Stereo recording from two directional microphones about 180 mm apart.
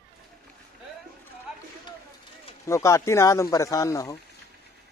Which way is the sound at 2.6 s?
15° left (ahead or behind).